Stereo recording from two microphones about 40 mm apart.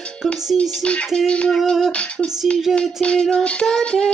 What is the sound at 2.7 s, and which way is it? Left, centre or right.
Child singing, left.